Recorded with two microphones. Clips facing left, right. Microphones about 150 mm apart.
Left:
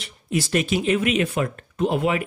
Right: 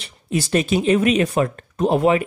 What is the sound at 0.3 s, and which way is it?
Speech, 30° right (ahead or behind).